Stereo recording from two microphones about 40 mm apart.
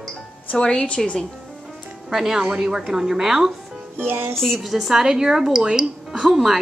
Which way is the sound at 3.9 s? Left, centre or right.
Right.